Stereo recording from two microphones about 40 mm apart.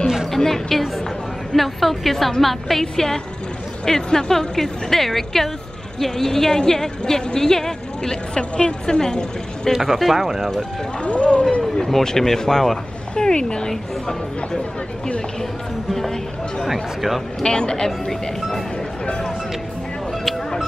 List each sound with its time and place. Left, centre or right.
0.4 s a woman's voice: centre
9.7 s a woman's voice: centre
11.1 s speech: left
11.7 s a woman's voice: centre
15.9 s a woman's voice: centre
16.7 s a woman's voice: centre
17.4 s a woman's voice: centre